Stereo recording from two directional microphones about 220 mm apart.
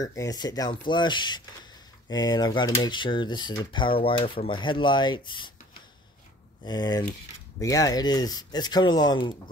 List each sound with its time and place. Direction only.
0.0 s speech: 15° left (ahead or behind)
6.6 s speech: 20° left (ahead or behind)